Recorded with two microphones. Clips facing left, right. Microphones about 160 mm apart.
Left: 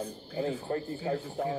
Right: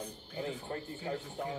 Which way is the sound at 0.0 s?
35° left (ahead or behind).